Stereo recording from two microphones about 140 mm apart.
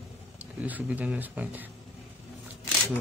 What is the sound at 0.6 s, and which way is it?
Speech, 10° right (ahead or behind).